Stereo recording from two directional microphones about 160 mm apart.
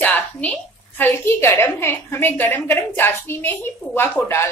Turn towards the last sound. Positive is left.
turn(degrees=15)  # may be behind; listen again after turning